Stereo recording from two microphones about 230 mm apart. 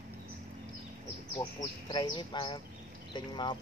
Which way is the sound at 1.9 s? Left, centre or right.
Centre.